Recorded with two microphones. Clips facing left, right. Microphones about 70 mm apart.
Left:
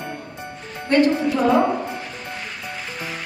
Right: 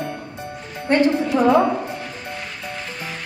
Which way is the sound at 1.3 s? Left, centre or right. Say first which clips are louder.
Right 3 dB; centre.